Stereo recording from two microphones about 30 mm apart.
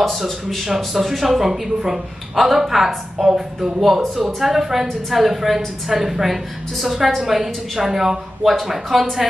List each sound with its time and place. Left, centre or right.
0.7 s speech: centre
1.4 s a woman's voice: centre